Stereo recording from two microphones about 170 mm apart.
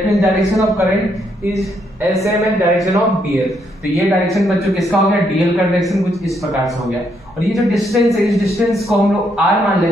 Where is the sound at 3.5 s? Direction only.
Centre (ahead or behind).